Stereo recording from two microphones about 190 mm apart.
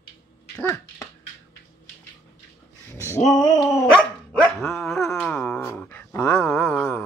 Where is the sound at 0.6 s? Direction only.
15° left (ahead or behind).